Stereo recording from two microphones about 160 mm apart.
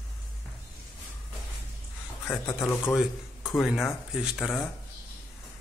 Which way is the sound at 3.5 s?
5° right (ahead or behind).